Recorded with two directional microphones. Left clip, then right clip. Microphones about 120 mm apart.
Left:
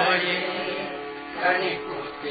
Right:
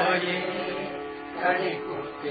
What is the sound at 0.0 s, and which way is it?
Music, 35° left (ahead or behind).